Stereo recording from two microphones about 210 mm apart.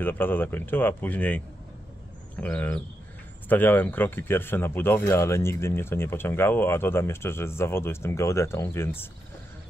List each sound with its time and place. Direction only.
0.0 s speech: 10° left (ahead or behind)
2.4 s speech: 5° left (ahead or behind)